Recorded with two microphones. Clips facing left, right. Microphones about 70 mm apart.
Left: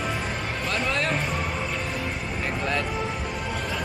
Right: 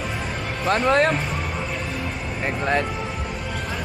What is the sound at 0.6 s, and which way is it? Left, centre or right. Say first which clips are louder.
Speech: right 10 dB; right.